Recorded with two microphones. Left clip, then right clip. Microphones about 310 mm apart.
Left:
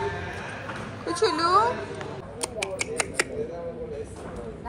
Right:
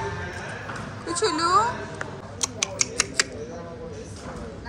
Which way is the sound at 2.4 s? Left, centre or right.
Centre.